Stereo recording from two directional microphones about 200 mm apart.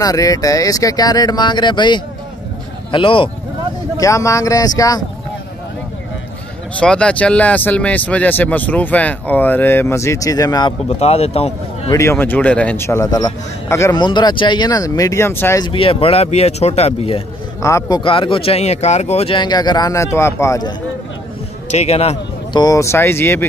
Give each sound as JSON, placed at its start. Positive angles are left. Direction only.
{"t": 0.0, "sound": "a man's voice", "side_deg": 15}
{"t": 4.0, "sound": "speech", "side_deg": 15}
{"t": 6.8, "sound": "speech", "side_deg": 5}
{"t": 10.9, "sound": "speech", "side_deg": 30}
{"t": 11.9, "sound": "a man's voice", "side_deg": 15}
{"t": 17.6, "sound": "a man's voice", "side_deg": 15}
{"t": 21.7, "sound": "speech", "side_deg": 30}
{"t": 22.6, "sound": "speech", "side_deg": 15}